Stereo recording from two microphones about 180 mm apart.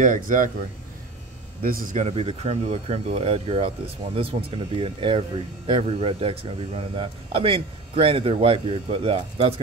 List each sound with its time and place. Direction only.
0.0 s a man's voice: 45° right (ahead or behind)